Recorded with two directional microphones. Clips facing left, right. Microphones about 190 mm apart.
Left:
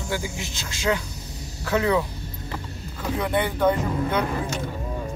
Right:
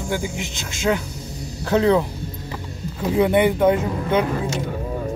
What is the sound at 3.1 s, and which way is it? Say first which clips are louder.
Speech: right 8 dB; 20° right (ahead or behind).